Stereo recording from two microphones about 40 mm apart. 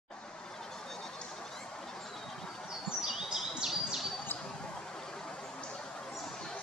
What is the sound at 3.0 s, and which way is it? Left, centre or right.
Bird vocalization, centre.